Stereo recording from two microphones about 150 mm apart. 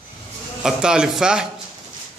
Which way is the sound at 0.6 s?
5° right (ahead or behind).